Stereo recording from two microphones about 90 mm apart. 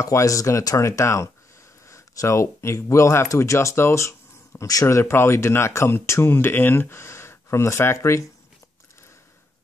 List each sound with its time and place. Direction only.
0.0 s speech: 40° left (ahead or behind)